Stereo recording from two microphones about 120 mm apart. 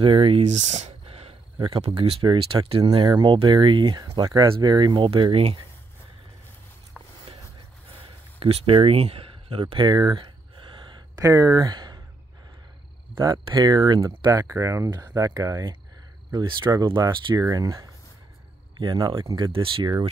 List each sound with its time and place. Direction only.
0.0 s speech: 50° right (ahead or behind)
0.4 s a sound: 75° right (ahead or behind); by 1.3 s 60° right (ahead or behind)
1.8 s speech: 50° right (ahead or behind)
3.1 s speech: 40° right (ahead or behind)
8.4 s speech: 50° right (ahead or behind)
11.1 s speech: 30° right (ahead or behind)
13.2 s speech: 35° right (ahead or behind)
19.5 s speech: 45° right (ahead or behind)